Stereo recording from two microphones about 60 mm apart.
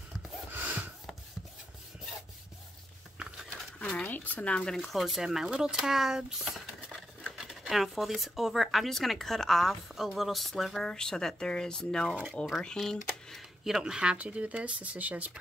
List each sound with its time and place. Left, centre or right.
0.5 s a sound: right
4.0 s speech: left
4.6 s speech: centre
13.7 s speech: centre
14.1 s speech: right